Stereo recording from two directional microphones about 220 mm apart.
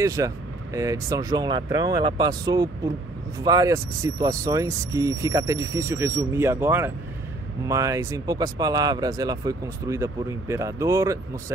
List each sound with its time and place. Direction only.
0.0 s speech: 15° right (ahead or behind)